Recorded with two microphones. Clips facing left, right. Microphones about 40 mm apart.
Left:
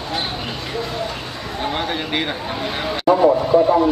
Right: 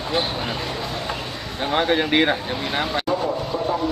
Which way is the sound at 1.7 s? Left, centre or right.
Centre.